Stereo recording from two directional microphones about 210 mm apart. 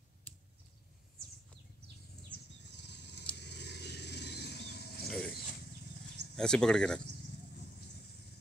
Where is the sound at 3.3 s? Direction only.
55° left (ahead or behind).